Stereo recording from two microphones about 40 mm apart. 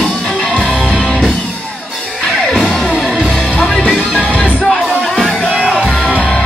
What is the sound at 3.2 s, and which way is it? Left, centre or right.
Music, centre.